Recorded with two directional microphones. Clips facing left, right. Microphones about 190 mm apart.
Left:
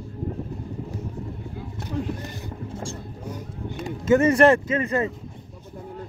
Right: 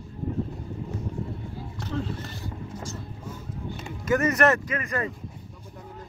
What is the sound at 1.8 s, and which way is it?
Speech, 15° left (ahead or behind).